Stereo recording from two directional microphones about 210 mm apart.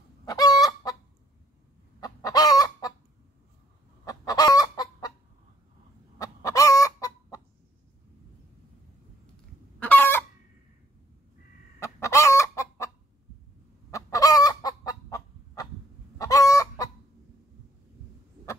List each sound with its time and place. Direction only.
0.2 s chicken: 15° left (ahead or behind)
2.0 s chicken: 15° left (ahead or behind)
4.0 s chicken: 15° left (ahead or behind)
6.1 s chicken: 15° left (ahead or behind)
9.8 s chicken: 10° left (ahead or behind)
11.8 s chicken: 15° left (ahead or behind)